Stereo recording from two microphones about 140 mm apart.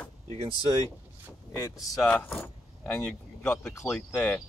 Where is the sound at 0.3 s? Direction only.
45° right (ahead or behind).